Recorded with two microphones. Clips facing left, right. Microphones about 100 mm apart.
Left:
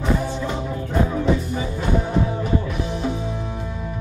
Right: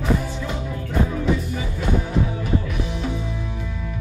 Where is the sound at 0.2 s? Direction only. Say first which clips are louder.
Left 3 dB; 30° left (ahead or behind).